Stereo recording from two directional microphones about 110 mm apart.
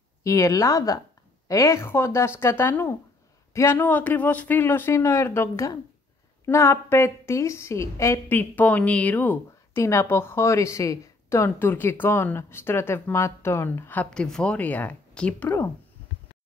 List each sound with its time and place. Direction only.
0.2 s a woman's voice: 30° left (ahead or behind)
14.1 s speech: 5° left (ahead or behind)